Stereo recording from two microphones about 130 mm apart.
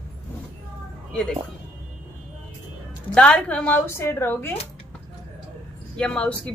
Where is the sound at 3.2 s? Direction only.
10° left (ahead or behind).